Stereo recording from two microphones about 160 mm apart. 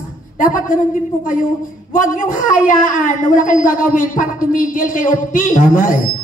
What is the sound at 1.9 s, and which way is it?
Speech, 55° left (ahead or behind).